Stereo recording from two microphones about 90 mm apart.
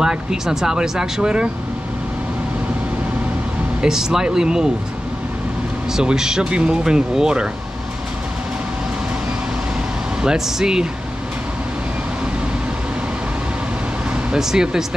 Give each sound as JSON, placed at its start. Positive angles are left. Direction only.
{"t": 0.0, "sound": "speech", "side_deg": -5}
{"t": 3.8, "sound": "speech", "side_deg": -5}
{"t": 5.9, "sound": "speech", "side_deg": -5}
{"t": 10.2, "sound": "speech", "side_deg": -5}
{"t": 14.1, "sound": "speech", "side_deg": -5}